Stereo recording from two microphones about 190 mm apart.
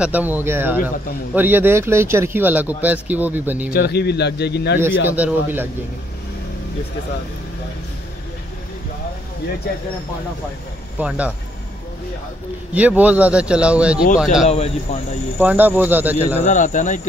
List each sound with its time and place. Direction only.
0.0 s speech: 10° right (ahead or behind)
3.7 s speech: 60° left (ahead or behind)
4.7 s speech: 10° right (ahead or behind)
11.0 s speech: 5° right (ahead or behind)
12.7 s speech: 10° right (ahead or behind)
14.5 s speech: 35° left (ahead or behind)
15.3 s speech: 10° right (ahead or behind)
16.4 s speech: 40° left (ahead or behind)